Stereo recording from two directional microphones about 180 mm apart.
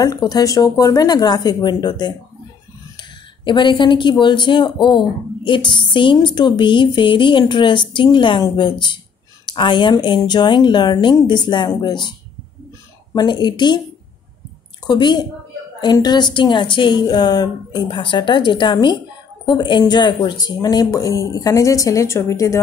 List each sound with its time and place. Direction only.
0.0 s speech: 20° left (ahead or behind)
13.1 s speech: 25° left (ahead or behind)
14.9 s speech: 25° left (ahead or behind)